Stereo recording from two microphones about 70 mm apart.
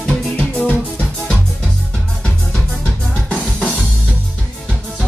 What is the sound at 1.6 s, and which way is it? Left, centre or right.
Music, centre.